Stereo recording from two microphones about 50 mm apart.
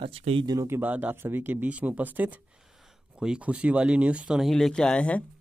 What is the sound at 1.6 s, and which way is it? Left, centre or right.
Speech, right.